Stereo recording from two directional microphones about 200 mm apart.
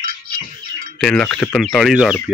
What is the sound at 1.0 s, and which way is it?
Speech, 5° left (ahead or behind).